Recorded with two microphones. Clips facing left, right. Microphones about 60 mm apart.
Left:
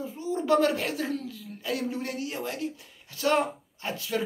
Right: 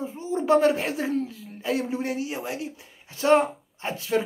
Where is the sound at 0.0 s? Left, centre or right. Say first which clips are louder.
Right 3 dB; right.